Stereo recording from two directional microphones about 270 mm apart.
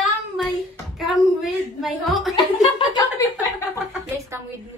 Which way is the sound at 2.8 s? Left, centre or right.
Centre.